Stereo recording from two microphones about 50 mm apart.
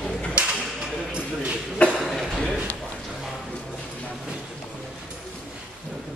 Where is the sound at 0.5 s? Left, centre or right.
Centre.